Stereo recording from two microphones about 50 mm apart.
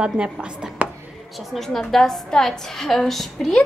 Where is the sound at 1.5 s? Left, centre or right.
Centre.